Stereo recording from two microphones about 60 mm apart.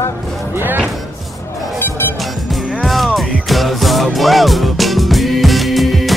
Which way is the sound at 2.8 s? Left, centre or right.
Centre.